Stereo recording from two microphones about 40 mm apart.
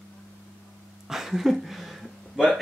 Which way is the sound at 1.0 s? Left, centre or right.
Centre.